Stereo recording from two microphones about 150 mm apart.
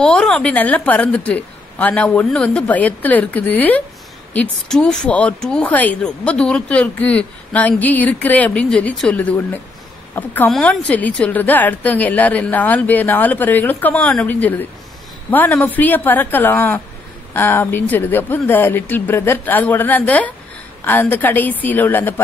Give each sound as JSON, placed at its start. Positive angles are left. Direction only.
{"t": 0.0, "sound": "speech", "side_deg": 5}